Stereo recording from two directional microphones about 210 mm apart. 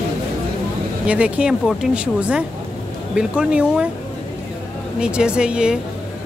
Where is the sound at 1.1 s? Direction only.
5° right (ahead or behind).